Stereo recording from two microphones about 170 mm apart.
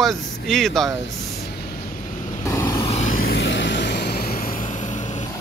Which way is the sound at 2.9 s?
45° left (ahead or behind).